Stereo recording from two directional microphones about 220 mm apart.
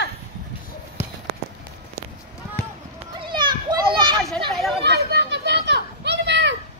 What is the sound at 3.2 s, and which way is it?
Children playing, 20° right (ahead or behind).